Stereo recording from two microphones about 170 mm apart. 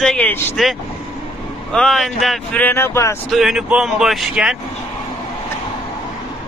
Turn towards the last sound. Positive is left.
turn(degrees=0)  # may be behind; listen again after turning